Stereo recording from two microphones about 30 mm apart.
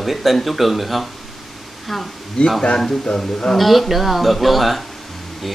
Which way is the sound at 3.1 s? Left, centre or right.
Left.